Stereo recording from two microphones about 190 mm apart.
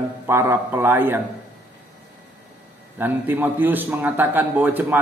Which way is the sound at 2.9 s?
10° right (ahead or behind).